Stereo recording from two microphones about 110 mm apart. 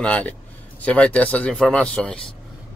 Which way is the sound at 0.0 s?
10° left (ahead or behind).